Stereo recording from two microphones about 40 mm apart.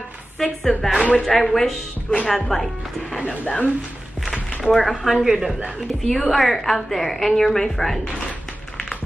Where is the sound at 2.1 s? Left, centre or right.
Left.